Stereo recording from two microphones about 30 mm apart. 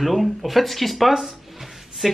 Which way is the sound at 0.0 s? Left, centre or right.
Centre.